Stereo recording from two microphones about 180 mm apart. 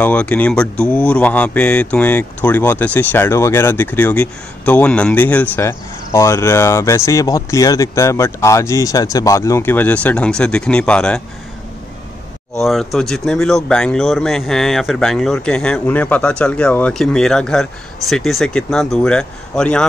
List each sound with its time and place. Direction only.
0.0 s speech: 5° left (ahead or behind)
12.5 s speech: centre (ahead or behind)